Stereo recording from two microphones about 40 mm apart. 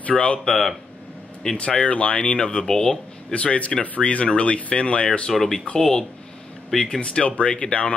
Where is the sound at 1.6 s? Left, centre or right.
Left.